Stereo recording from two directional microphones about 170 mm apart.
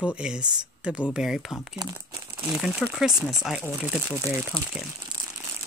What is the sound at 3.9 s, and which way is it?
Speech, centre (ahead or behind).